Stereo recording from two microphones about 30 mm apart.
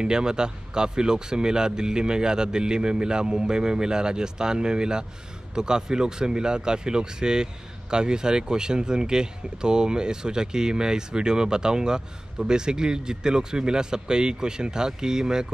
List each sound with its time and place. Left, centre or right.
0.0 s speech: right